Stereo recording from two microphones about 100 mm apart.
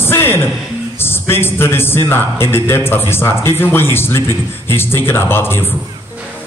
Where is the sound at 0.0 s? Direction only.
25° left (ahead or behind).